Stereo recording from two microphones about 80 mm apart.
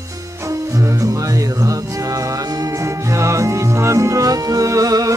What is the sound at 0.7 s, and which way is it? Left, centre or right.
Music, right.